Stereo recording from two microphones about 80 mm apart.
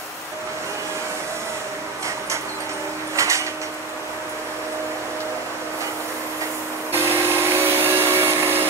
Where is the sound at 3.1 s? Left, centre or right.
Right.